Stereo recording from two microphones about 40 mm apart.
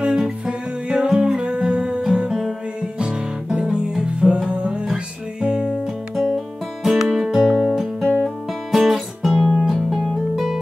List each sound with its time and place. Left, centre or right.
0.0 s music: centre
1.4 s music: right
6.3 s music: centre